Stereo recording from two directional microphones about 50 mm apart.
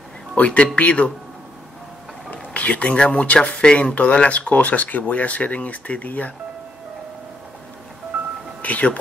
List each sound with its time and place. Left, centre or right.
0.3 s speech: left
2.3 s speech: left
8.6 s speech: left